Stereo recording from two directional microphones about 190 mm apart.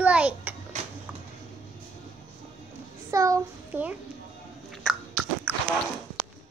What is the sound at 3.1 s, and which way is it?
Child singing, 15° right (ahead or behind).